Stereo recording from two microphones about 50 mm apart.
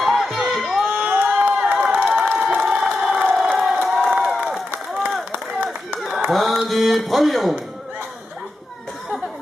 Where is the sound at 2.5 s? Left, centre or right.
Centre.